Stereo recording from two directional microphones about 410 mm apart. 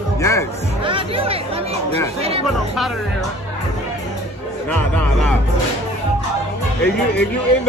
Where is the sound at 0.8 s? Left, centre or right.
Centre.